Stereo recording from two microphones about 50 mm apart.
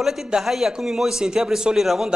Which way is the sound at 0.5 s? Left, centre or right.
Centre.